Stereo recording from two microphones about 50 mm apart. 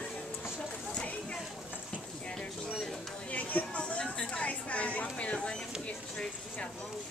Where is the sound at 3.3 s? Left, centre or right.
Left.